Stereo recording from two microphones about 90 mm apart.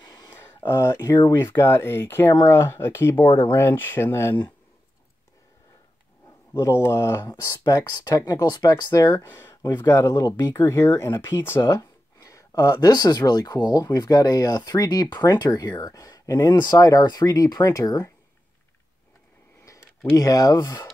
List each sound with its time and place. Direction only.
0.0 s a sound: 45° left (ahead or behind)
0.3 s speech: 25° left (ahead or behind); by 1.3 s 45° left (ahead or behind)
1.3 s speech: 30° left (ahead or behind)
6.6 s speech: 30° left (ahead or behind)
7.6 s speech: 45° left (ahead or behind)
9.6 s speech: 50° left (ahead or behind)
10.0 s speech: 35° left (ahead or behind)
20.2 s speech: 40° left (ahead or behind)